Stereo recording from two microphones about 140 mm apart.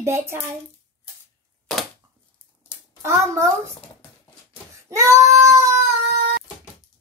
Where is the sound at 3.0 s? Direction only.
20° right (ahead or behind).